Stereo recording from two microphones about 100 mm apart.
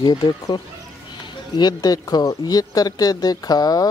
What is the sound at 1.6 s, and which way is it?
Speech, 40° left (ahead or behind).